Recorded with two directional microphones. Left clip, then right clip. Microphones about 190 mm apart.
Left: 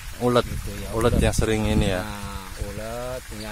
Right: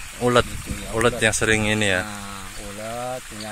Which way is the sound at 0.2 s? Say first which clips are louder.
Right 2 dB; 5° left (ahead or behind).